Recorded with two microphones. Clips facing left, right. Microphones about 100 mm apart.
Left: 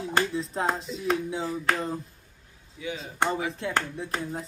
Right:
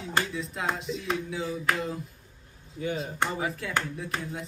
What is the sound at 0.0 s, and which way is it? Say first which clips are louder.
Speech: left 3 dB; 35° left (ahead or behind).